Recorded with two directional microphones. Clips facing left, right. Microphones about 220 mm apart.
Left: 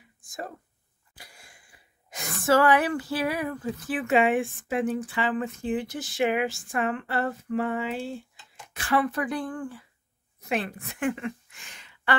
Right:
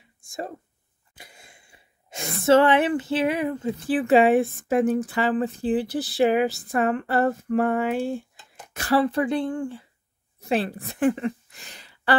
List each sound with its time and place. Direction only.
0.2 s speech: 25° right (ahead or behind)
9.0 s a woman's voice: 25° right (ahead or behind)